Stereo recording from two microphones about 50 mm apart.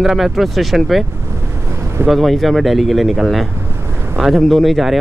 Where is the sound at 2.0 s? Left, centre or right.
Centre.